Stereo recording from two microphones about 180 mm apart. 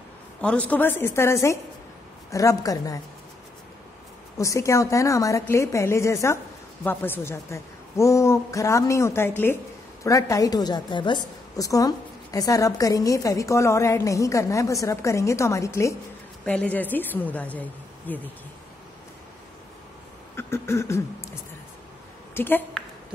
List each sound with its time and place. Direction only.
0.4 s a woman's voice: 5° left (ahead or behind)
4.4 s a woman's voice: 15° left (ahead or behind)
20.3 s a woman's voice: 15° left (ahead or behind)
22.3 s a woman's voice: 10° left (ahead or behind)